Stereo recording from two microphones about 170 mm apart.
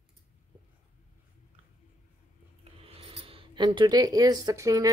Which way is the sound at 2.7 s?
35° right (ahead or behind).